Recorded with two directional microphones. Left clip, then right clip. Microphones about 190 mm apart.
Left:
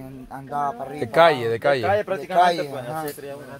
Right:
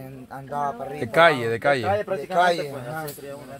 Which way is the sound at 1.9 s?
70° left (ahead or behind).